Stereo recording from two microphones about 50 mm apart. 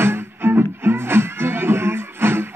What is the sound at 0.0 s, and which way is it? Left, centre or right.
Music, right.